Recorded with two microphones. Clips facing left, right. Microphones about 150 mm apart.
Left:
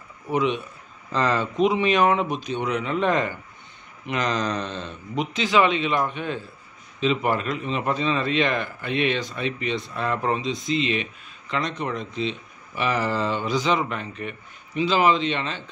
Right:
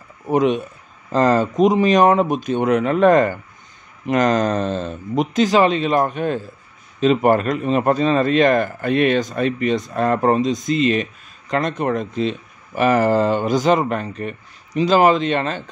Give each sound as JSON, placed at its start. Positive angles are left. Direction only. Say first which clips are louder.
{"t": 0.3, "sound": "speech", "louder": "right 6 dB", "side_deg": -45}